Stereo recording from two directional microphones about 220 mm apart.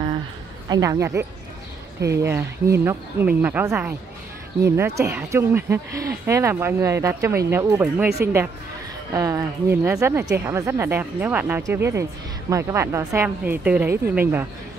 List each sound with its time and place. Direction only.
0.7 s speech: 15° right (ahead or behind)